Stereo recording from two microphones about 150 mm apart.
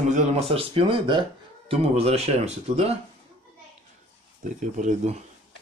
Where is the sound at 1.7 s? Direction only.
40° right (ahead or behind).